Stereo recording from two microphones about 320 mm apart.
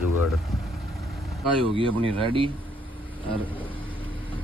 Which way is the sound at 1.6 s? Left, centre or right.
Centre.